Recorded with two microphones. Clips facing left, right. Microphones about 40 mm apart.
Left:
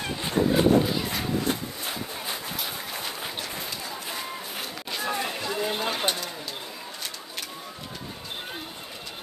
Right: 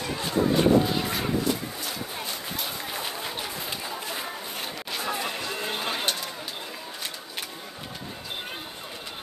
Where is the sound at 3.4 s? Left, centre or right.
Centre.